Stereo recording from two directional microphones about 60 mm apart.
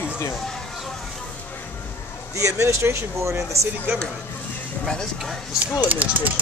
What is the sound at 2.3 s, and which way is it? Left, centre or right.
Speech, right.